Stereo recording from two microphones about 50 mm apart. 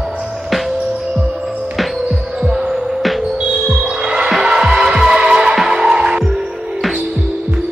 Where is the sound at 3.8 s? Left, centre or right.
Centre.